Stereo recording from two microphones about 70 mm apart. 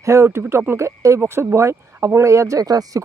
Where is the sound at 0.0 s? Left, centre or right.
Right.